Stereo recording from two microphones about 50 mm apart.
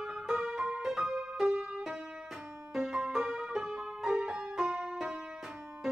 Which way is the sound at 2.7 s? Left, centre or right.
Centre.